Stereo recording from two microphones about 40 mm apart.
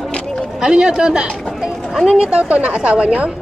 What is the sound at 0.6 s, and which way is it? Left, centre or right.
A woman's voice, centre.